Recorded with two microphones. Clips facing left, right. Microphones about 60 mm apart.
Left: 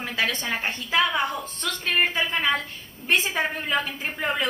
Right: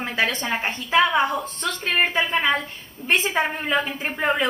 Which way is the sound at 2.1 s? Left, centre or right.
Right.